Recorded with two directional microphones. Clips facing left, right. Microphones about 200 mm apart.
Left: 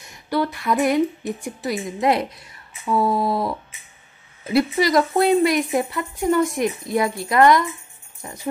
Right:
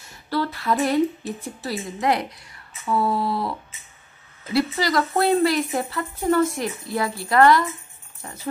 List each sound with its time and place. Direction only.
0.0 s speech: 15° left (ahead or behind)
4.5 s speech: 20° left (ahead or behind)
8.2 s music: 15° left (ahead or behind)